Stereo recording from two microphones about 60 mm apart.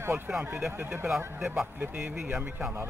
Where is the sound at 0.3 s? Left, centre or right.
Centre.